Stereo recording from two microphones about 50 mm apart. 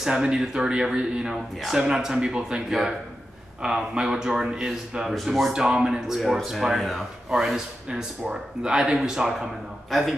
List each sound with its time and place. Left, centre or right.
0.0 s speech: centre
3.6 s speech: centre
5.1 s speech: centre
5.5 s speech: centre
6.0 s speech: centre
9.8 s speech: centre